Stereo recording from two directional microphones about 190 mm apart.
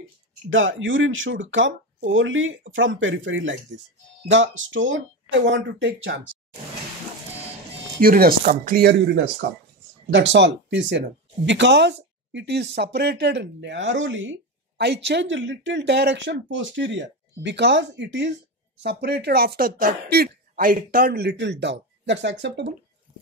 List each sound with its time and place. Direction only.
0.5 s speech: 90° right; by 6.2 s 75° right (ahead or behind)
8.0 s chopping: 50° right (ahead or behind)
9.4 s speech: 65° right (ahead or behind)
14.8 s speech: 65° right (ahead or behind)